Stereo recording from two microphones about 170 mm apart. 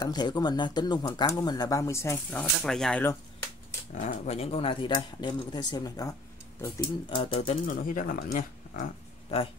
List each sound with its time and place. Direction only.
0.0 s speech: 25° left (ahead or behind)
2.6 s speech: 5° left (ahead or behind)
3.9 s speech: 45° left (ahead or behind); by 7.2 s 20° left (ahead or behind)
7.4 s speech: 50° left (ahead or behind)